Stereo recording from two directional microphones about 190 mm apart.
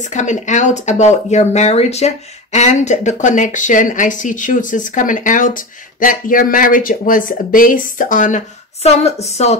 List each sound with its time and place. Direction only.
0.0 s speech: 40° left (ahead or behind)